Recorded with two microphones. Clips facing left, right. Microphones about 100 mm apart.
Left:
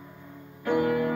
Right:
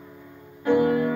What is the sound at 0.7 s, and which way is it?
Music, 25° right (ahead or behind).